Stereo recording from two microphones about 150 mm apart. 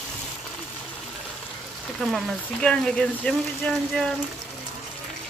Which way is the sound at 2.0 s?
Centre (ahead or behind).